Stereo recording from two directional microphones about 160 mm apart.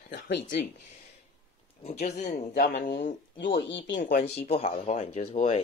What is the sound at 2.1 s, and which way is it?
Speech, 50° left (ahead or behind).